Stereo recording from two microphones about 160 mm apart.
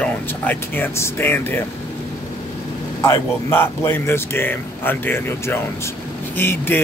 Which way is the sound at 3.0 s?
15° left (ahead or behind).